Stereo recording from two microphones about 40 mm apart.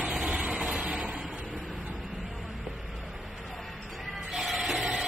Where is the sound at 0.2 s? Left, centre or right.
Right.